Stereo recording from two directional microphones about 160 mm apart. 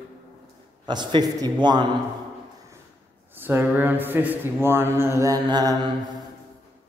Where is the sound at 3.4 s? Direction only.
10° right (ahead or behind).